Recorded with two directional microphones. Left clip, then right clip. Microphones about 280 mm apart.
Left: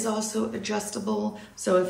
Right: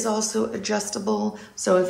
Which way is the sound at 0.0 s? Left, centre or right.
Centre.